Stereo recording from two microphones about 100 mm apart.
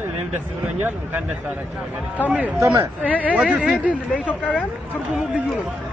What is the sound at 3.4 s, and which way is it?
Speech, 10° right (ahead or behind).